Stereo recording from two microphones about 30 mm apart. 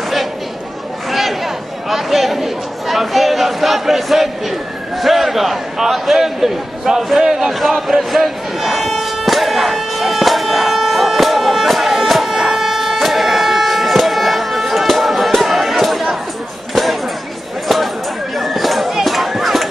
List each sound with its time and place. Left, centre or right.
1.1 s chatter: centre
7.2 s speech: centre
8.0 s a sound: centre
18.3 s chatter: centre
19.0 s run: centre